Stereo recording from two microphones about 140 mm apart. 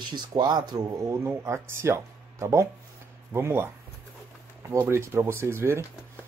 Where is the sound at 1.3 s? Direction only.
20° right (ahead or behind).